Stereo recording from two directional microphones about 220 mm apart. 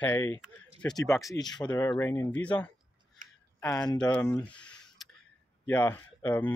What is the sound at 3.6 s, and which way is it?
Speech, 15° left (ahead or behind).